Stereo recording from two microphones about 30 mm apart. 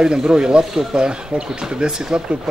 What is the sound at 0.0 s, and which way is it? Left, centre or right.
Speech, right.